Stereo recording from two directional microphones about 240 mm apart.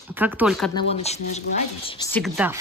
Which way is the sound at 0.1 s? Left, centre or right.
Centre.